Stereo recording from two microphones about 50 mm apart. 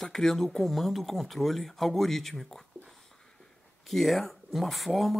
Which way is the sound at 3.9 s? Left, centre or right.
Centre.